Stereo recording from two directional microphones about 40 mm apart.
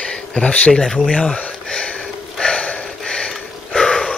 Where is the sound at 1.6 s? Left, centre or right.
Centre.